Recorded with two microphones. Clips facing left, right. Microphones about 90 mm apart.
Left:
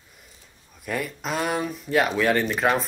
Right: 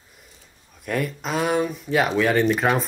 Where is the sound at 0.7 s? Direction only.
Centre (ahead or behind).